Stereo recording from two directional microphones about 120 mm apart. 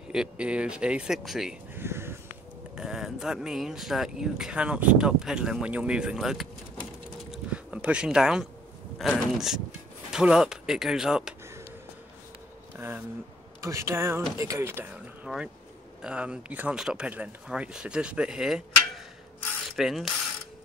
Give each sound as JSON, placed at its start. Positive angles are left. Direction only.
{"t": 0.1, "sound": "speech", "side_deg": -5}
{"t": 1.8, "sound": "a sound", "side_deg": -20}
{"t": 2.7, "sound": "speech", "side_deg": -5}
{"t": 7.2, "sound": "a sound", "side_deg": -10}
{"t": 8.9, "sound": "speech", "side_deg": 0}
{"t": 12.7, "sound": "a sound", "side_deg": -20}
{"t": 13.6, "sound": "a woman's voice", "side_deg": -25}
{"t": 15.2, "sound": "speech", "side_deg": -5}
{"t": 19.7, "sound": "mechanisms", "side_deg": 0}